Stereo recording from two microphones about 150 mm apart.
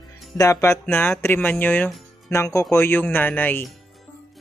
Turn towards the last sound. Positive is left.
turn(degrees=10)  # may be behind; listen again after turning